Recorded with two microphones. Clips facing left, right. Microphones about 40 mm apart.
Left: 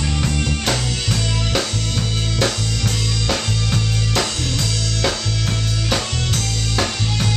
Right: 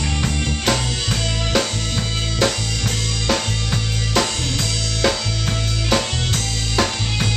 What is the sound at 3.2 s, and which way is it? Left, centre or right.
Music, centre.